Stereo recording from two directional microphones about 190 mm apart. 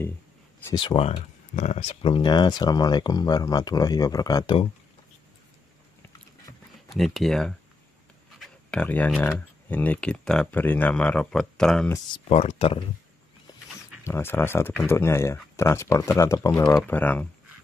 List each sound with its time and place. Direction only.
0.7 s speech: 25° left (ahead or behind)
6.9 s speech: centre (ahead or behind)
12.3 s speech: 30° left (ahead or behind)
14.0 s speech: 10° left (ahead or behind)